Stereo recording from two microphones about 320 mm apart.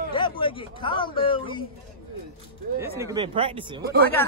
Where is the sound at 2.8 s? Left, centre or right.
Centre.